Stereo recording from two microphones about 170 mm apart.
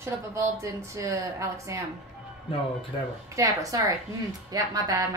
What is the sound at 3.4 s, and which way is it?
A woman's voice, 20° right (ahead or behind).